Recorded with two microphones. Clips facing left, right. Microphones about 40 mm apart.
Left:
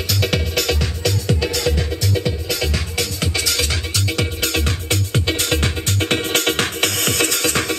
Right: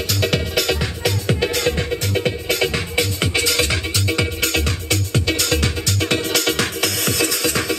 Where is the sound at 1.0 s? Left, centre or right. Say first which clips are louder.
Right 1 dB; right.